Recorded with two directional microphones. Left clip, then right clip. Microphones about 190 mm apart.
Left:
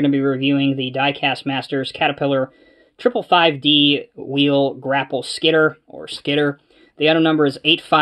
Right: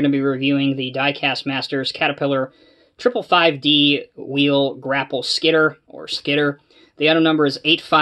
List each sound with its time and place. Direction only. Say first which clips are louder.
0.0 s speech: left 1 dB; 25° left (ahead or behind)